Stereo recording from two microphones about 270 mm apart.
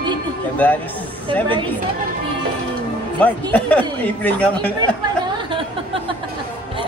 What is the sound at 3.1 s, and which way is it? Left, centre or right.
Speech, centre.